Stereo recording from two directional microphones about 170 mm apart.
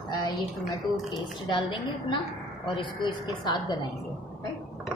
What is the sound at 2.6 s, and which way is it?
A woman's voice, 30° left (ahead or behind).